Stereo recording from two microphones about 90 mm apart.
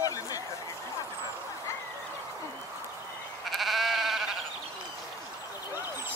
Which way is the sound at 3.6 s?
Centre (ahead or behind).